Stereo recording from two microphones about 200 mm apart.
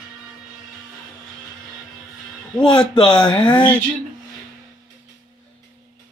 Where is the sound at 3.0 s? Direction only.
20° left (ahead or behind).